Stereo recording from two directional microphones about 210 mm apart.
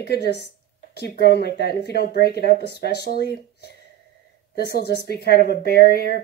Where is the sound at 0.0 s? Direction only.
50° left (ahead or behind).